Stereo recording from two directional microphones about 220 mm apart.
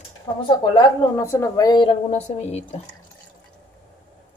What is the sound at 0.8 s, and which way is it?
Speech, 10° left (ahead or behind).